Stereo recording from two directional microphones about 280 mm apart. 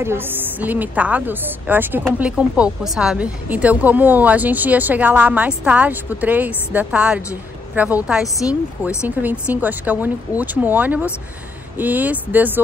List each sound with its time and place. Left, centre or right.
0.0 s a woman's voice: centre